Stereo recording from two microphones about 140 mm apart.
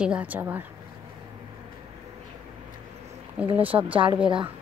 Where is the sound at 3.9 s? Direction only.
40° right (ahead or behind).